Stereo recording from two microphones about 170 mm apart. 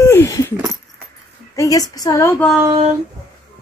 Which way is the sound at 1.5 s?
20° left (ahead or behind).